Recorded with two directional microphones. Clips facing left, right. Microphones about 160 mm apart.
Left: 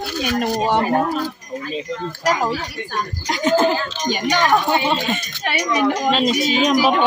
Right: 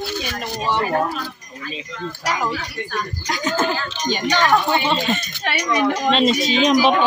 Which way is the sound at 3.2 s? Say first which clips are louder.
Left 6 dB; 25° left (ahead or behind).